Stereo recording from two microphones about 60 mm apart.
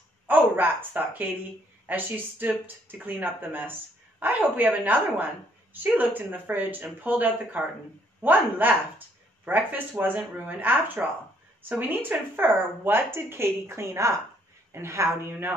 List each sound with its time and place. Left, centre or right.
0.3 s a woman's voice: right